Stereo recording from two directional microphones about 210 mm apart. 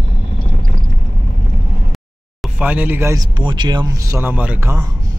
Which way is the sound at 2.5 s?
5° right (ahead or behind).